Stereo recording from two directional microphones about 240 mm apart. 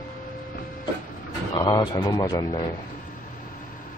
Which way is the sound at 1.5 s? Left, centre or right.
Centre.